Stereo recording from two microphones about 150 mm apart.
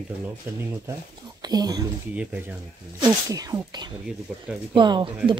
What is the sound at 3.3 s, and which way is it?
Speech, 25° right (ahead or behind).